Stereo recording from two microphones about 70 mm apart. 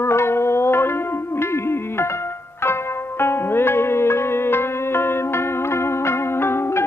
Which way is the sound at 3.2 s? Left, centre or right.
Left.